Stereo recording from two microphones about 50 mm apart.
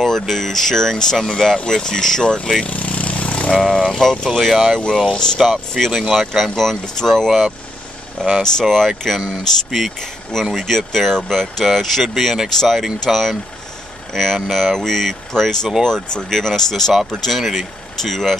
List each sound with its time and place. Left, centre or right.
0.0 s speech: centre
2.6 s vehicle: left
3.6 s speech: centre
5.0 s speech: centre
5.4 s speech: centre
8.4 s speech: centre
10.6 s speech: centre